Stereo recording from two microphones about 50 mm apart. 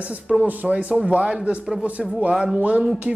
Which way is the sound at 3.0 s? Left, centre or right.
Centre.